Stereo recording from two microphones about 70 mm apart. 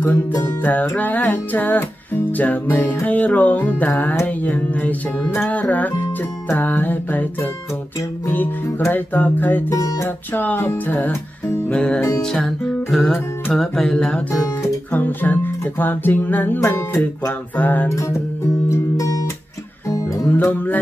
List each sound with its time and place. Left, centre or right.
0.1 s music: left
8.9 s music: left
11.7 s music: centre
12.9 s music: centre
14.9 s music: left
18.7 s music: left
20.2 s music: left